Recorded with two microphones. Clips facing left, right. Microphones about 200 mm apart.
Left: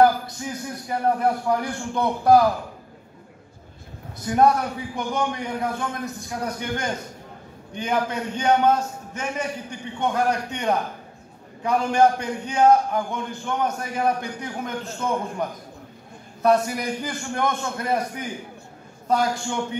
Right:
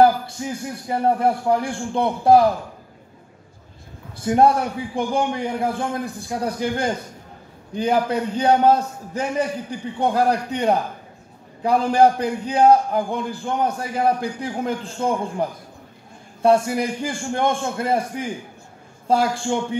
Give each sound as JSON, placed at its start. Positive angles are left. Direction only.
{"t": 0.8, "sound": "a man's voice", "side_deg": -30}
{"t": 4.2, "sound": "a man's voice", "side_deg": -30}
{"t": 16.4, "sound": "a man's voice", "side_deg": -30}